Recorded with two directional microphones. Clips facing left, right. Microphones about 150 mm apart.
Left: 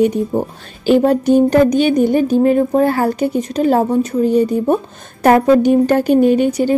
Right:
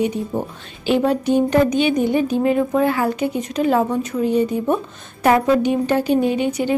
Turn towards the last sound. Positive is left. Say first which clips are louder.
# left 5 dB
turn(degrees=35)  # may be behind; listen again after turning